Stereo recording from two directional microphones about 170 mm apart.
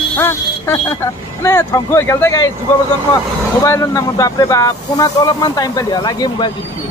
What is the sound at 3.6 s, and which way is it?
Speech, 20° left (ahead or behind).